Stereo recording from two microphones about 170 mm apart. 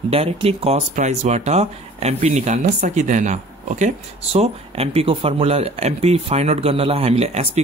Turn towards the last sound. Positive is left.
turn(degrees=-40)  # may be behind; listen again after turning